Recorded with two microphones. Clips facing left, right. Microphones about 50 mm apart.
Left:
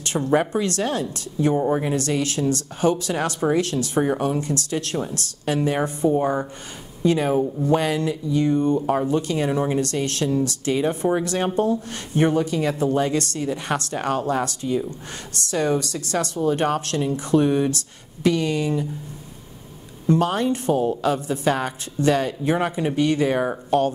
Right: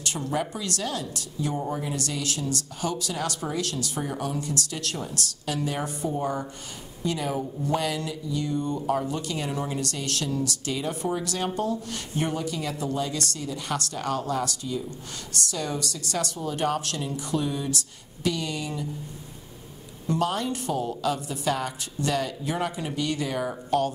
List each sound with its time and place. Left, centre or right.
0.0 s speech: left
20.1 s speech: left